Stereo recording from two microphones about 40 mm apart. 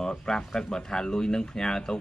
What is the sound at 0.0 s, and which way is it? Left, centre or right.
Speech, centre.